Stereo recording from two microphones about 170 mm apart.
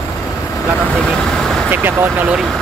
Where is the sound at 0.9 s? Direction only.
5° left (ahead or behind).